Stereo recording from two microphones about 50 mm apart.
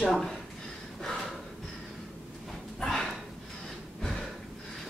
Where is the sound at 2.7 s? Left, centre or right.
Centre.